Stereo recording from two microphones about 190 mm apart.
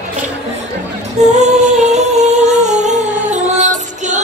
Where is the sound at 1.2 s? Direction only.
40° right (ahead or behind).